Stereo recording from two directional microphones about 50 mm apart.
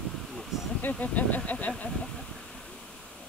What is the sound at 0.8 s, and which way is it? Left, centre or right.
Speech, left.